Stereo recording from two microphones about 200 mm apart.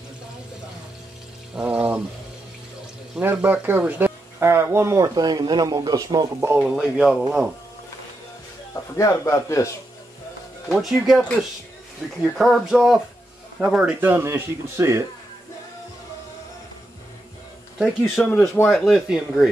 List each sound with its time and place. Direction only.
1.5 s pour: 5° right (ahead or behind)
3.2 s speech: 10° right (ahead or behind)
8.9 s speech: 15° left (ahead or behind)
10.7 s speech: centre (ahead or behind)
12.4 s speech: centre (ahead or behind)
17.7 s speech: centre (ahead or behind)